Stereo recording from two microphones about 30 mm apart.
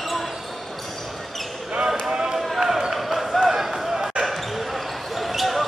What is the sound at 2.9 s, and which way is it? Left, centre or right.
Basketball bounce, centre.